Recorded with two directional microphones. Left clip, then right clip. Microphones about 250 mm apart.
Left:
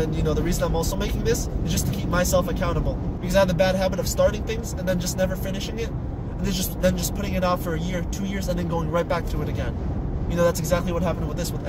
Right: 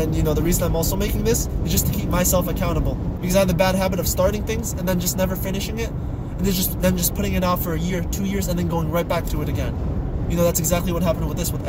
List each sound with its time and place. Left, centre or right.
0.1 s speech: centre
6.4 s speech: centre
10.3 s speech: centre